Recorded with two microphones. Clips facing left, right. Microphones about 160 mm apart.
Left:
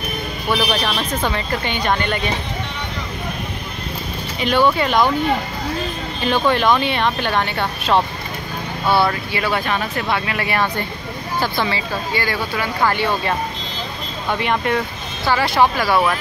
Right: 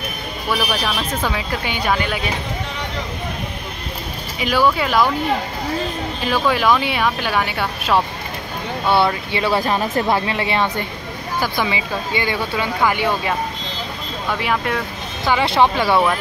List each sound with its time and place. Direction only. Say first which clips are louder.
0.7 s speech: left 1 dB; 5° right (ahead or behind)
4.4 s speech: left 1 dB; 5° right (ahead or behind)
6.2 s speech: left 1 dB; 5° right (ahead or behind)
8.9 s speech: right 1 dB; 25° right (ahead or behind)
14.4 s speech: left 2 dB; centre (ahead or behind)
15.2 s speech: even; 20° right (ahead or behind)